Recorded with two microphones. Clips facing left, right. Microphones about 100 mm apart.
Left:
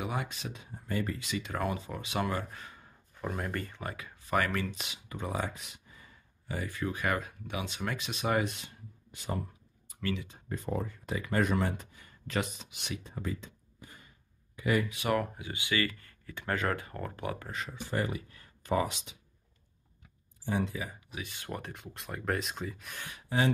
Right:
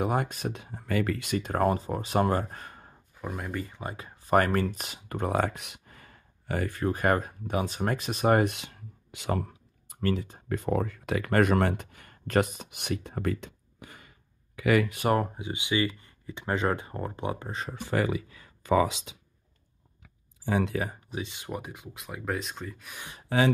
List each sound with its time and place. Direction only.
0.0 s speech: 50° right (ahead or behind); by 1.3 s 80° right
1.3 s speech: 45° right (ahead or behind)
3.2 s speech: centre (ahead or behind)
3.9 s speech: 35° right (ahead or behind)
8.5 s a sound: 85° right
9.8 s speech: 45° right (ahead or behind)
10.5 s speech: 70° right (ahead or behind); by 14.9 s 90° right
14.9 s speech: 45° right (ahead or behind)
15.1 s speech: 25° right (ahead or behind)
20.4 s speech: 90° right
21.1 s speech: 25° right (ahead or behind); by 22.9 s centre (ahead or behind)
23.3 s speech: 70° right (ahead or behind)